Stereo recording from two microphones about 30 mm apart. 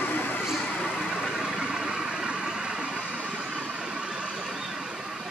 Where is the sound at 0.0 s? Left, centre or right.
Left.